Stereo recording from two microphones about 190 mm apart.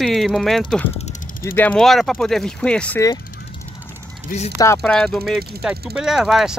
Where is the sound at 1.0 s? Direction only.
40° left (ahead or behind).